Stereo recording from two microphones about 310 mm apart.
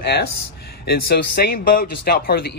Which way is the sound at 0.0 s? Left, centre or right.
Left.